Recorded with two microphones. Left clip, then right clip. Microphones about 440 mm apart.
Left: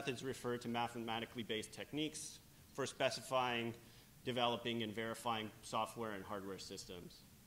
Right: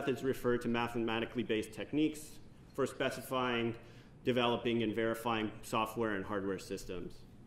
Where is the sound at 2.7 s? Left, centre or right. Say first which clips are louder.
Right 4 dB; left.